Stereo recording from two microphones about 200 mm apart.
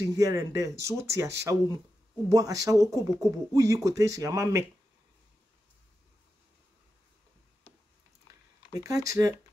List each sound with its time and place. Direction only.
0.1 s speech: 15° right (ahead or behind)
8.7 s speech: 15° right (ahead or behind)